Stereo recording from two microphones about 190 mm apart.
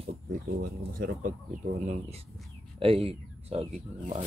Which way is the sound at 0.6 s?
45° right (ahead or behind).